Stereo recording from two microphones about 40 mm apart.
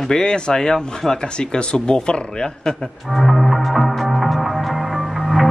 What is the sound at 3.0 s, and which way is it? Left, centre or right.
Music, centre.